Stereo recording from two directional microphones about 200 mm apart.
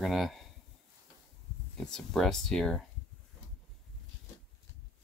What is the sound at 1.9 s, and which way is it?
Speech, centre (ahead or behind).